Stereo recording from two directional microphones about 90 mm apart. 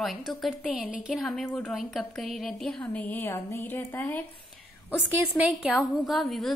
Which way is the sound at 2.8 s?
15° left (ahead or behind).